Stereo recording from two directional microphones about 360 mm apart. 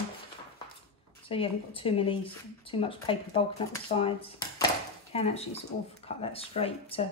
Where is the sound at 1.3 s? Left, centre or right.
Centre.